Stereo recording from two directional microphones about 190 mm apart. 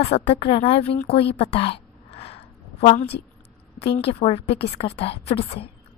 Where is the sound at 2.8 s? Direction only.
35° left (ahead or behind).